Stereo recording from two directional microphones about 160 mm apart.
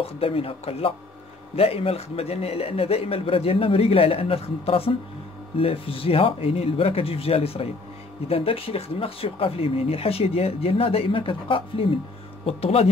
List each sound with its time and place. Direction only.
0.0 s speech: 35° left (ahead or behind)